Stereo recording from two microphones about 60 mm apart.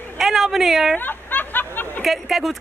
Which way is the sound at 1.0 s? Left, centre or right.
Left.